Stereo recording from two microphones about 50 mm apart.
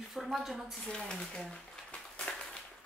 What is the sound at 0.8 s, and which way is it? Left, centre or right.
Speech, centre.